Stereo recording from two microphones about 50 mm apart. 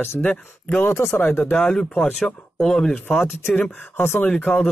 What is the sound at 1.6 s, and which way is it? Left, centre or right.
Speech, centre.